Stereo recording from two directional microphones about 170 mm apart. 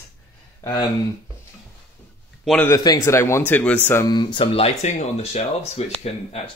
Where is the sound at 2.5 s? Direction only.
10° left (ahead or behind).